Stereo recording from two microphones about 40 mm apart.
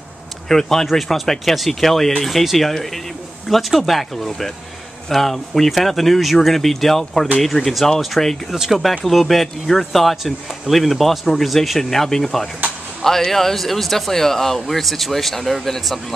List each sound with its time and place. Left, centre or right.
0.5 s speech: centre
0.8 s speech: centre
8.5 s speech: centre
9.0 s speech: centre